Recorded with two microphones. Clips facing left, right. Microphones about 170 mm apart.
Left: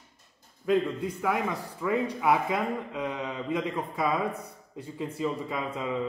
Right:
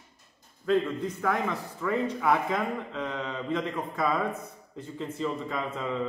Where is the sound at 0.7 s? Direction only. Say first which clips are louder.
Even; 10° left (ahead or behind).